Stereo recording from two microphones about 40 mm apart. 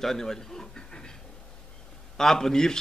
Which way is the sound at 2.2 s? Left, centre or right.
Centre.